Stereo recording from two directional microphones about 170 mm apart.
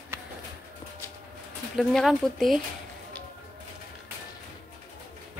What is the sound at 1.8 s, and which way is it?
Speech, centre (ahead or behind).